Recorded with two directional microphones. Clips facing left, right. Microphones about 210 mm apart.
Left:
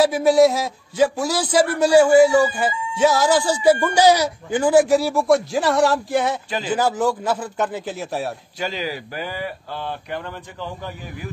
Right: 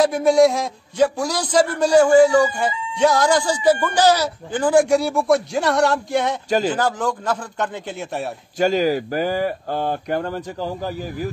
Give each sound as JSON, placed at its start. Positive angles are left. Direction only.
{"t": 0.0, "sound": "a man's voice", "side_deg": 5}
{"t": 8.5, "sound": "speech", "side_deg": -45}